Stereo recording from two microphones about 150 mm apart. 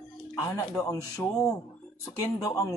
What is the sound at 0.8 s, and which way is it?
Speech, 20° left (ahead or behind).